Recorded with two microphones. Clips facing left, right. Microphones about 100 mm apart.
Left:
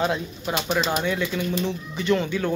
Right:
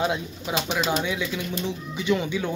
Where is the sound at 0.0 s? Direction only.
10° right (ahead or behind).